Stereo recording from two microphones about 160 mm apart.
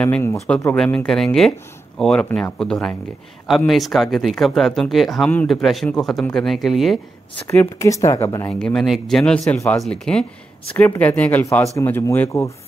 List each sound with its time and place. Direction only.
0.0 s speech: 15° left (ahead or behind); by 7.0 s centre (ahead or behind)
7.4 s speech: 20° left (ahead or behind)
8.5 s speech: 5° left (ahead or behind)